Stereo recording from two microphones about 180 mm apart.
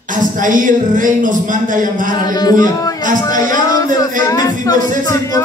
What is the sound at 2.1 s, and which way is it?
Speech, 20° left (ahead or behind).